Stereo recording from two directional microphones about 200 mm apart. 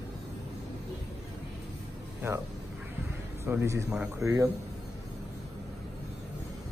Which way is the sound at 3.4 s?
15° right (ahead or behind).